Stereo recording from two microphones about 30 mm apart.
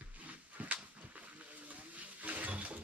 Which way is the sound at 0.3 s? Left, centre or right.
Right.